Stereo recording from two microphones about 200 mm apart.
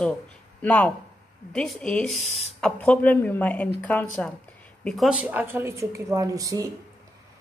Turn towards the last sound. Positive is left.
turn(degrees=-15)  # may be behind; listen again after turning